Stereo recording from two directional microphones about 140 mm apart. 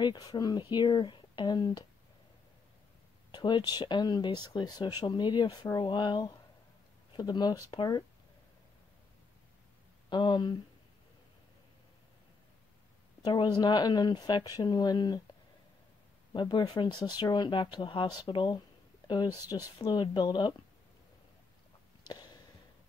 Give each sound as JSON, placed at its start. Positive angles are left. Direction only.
{"t": 0.0, "sound": "speech", "side_deg": 30}
{"t": 3.3, "sound": "speech", "side_deg": 35}
{"t": 10.0, "sound": "speech", "side_deg": 35}
{"t": 13.2, "sound": "speech", "side_deg": 30}
{"t": 16.3, "sound": "speech", "side_deg": 35}
{"t": 22.0, "sound": "a sound", "side_deg": 30}